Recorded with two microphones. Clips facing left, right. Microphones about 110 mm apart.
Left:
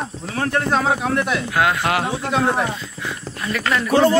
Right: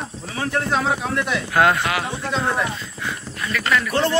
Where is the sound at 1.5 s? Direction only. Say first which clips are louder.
Right 3 dB; centre (ahead or behind).